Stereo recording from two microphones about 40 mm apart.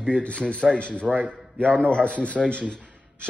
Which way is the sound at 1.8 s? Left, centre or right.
Left.